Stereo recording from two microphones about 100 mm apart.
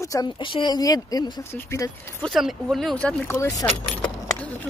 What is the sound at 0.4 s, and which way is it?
Speech, 55° left (ahead or behind).